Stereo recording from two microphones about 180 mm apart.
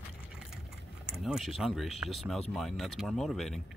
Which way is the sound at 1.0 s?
Centre (ahead or behind).